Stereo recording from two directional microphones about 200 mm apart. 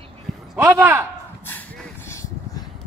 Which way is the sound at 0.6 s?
10° right (ahead or behind).